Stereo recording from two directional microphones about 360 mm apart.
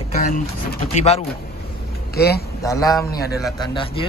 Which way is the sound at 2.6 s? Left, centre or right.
Centre.